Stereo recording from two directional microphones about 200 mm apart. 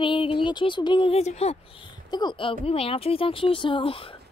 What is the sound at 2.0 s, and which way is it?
Speech, 20° left (ahead or behind).